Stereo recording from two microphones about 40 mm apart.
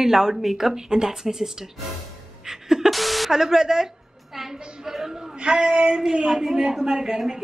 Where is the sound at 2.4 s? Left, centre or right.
Centre.